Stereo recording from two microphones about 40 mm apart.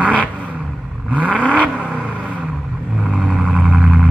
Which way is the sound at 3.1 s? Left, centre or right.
Right.